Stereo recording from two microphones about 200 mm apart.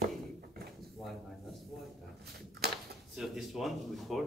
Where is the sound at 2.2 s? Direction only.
55° right (ahead or behind).